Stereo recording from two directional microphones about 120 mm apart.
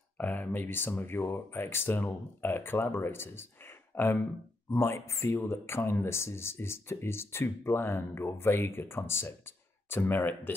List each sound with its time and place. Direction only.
0.2 s speech: 15° left (ahead or behind)